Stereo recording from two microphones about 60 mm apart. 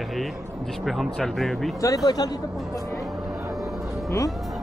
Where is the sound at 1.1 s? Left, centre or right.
Centre.